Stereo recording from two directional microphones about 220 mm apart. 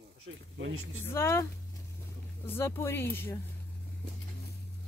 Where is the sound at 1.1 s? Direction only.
10° left (ahead or behind).